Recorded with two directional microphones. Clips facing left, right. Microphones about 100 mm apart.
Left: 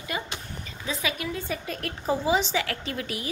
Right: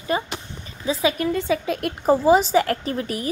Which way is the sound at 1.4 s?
80° right.